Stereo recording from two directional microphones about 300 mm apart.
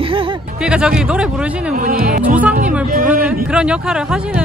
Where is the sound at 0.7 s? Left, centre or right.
Centre.